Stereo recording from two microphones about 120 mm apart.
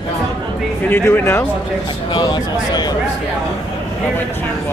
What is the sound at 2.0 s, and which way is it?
Speech, 35° left (ahead or behind).